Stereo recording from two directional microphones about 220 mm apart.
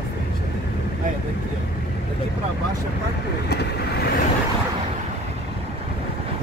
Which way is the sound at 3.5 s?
50° left (ahead or behind).